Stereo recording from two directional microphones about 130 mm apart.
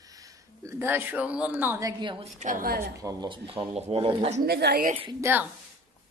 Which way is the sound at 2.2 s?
80° right.